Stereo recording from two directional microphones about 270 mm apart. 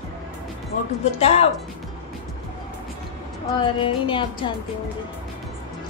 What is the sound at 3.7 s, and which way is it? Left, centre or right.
Music, centre.